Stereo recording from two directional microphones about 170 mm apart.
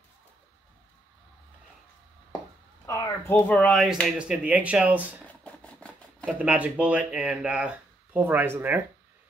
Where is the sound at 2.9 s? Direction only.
15° left (ahead or behind); by 5.2 s 10° right (ahead or behind).